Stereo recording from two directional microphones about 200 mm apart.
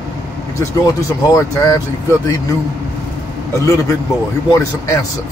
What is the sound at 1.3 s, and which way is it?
Speech, 15° left (ahead or behind).